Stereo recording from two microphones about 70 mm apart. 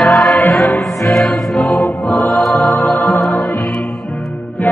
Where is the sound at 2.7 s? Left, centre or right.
Left.